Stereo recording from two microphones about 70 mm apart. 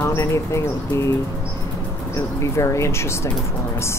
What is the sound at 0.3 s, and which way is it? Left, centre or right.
Speech, left.